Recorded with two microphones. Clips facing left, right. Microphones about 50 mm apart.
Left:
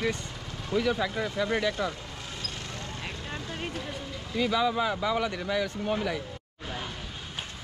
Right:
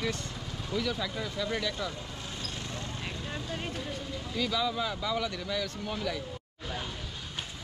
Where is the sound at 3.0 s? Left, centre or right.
Centre.